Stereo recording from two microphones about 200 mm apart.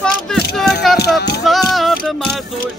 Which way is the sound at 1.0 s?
55° left (ahead or behind).